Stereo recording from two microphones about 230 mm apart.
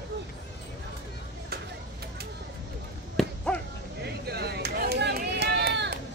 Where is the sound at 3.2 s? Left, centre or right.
Centre.